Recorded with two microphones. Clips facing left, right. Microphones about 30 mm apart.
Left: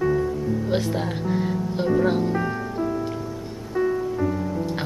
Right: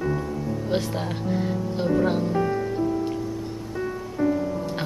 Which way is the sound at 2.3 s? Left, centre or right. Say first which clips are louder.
Right 1 dB; left.